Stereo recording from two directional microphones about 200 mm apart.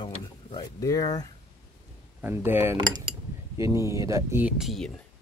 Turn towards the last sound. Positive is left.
turn(degrees=0)  # may be behind; listen again after turning